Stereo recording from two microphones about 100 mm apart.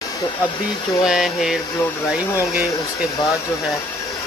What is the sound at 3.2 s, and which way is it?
Speech, centre (ahead or behind).